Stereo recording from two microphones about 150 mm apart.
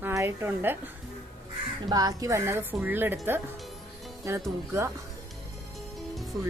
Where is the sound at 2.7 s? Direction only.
10° right (ahead or behind).